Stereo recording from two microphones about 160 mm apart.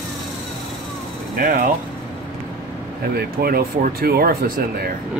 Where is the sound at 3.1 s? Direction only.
70° right (ahead or behind).